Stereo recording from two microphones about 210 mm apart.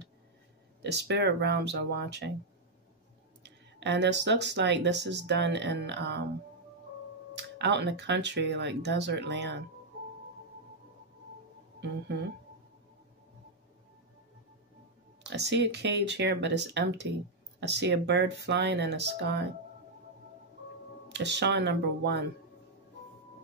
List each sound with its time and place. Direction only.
0.8 s speech: 55° right (ahead or behind)
3.4 s speech: 55° right (ahead or behind)
7.3 s speech: 55° right (ahead or behind)
15.2 s speech: 55° right (ahead or behind)
21.1 s speech: 55° right (ahead or behind)